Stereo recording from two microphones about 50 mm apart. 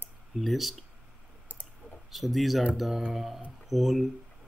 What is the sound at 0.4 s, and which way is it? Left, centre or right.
Speech, centre.